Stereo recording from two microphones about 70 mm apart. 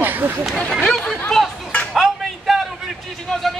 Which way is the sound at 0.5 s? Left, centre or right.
Centre.